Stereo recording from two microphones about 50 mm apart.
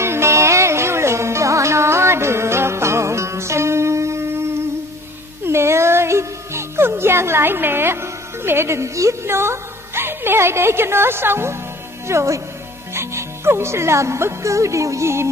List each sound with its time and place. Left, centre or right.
0.0 s music: right
12.1 s a woman's voice: right